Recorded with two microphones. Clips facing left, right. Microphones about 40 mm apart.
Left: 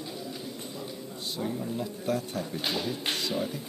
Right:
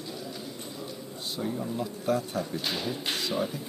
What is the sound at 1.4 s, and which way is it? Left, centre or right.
Speech, centre.